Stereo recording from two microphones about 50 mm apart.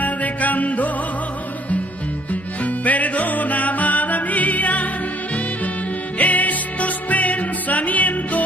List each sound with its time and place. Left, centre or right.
0.0 s music: left
2.6 s music: left
6.1 s music: left